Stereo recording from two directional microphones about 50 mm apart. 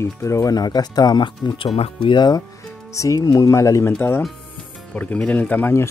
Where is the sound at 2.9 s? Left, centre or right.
Left.